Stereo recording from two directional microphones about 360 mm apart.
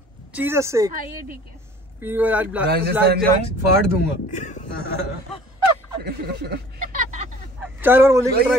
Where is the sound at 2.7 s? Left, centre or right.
Right.